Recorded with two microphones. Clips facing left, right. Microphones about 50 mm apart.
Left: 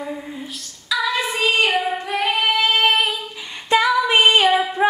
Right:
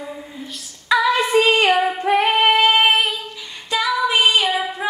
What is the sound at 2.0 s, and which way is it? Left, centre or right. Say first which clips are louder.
Female singing: right 5 dB; right.